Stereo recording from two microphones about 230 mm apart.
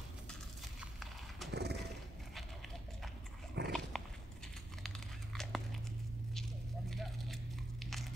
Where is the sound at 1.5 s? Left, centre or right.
Right.